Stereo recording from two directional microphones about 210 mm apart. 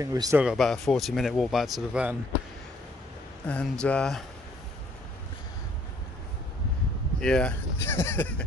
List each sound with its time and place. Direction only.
0.0 s speech: 15° right (ahead or behind)
0.4 s speech: centre (ahead or behind)
3.4 s speech: 5° left (ahead or behind)
7.2 s speech: 5° left (ahead or behind)